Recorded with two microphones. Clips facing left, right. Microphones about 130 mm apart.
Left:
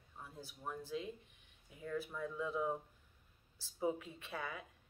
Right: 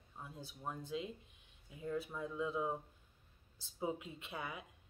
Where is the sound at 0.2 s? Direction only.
20° right (ahead or behind).